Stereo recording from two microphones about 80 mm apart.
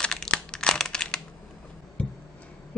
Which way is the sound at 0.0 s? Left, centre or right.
Centre.